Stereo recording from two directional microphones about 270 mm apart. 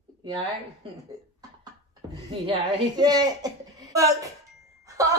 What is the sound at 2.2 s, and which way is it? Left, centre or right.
A woman's voice, centre.